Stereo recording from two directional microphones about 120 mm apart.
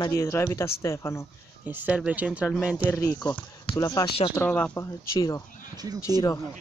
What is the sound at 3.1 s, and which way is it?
Speech, 35° left (ahead or behind).